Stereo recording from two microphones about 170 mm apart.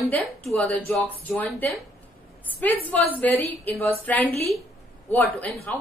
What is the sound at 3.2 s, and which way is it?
A woman's voice, 10° left (ahead or behind).